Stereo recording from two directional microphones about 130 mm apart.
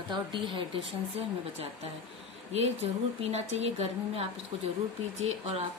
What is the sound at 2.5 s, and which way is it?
A woman's voice, 55° right (ahead or behind).